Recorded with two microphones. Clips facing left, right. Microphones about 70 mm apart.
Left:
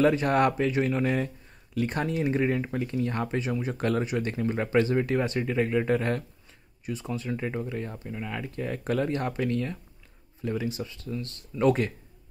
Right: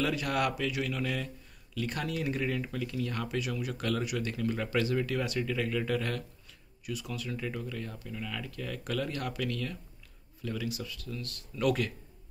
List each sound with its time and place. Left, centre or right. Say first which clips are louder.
0.0 s speech: left 8 dB; left